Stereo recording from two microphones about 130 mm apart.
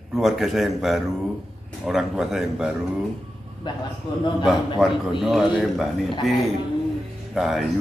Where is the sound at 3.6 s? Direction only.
35° left (ahead or behind).